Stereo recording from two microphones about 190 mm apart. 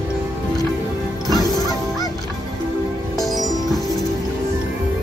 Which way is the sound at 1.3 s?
20° left (ahead or behind).